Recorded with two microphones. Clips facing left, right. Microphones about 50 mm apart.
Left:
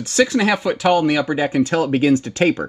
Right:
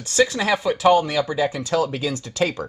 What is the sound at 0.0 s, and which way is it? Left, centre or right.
Speech, left.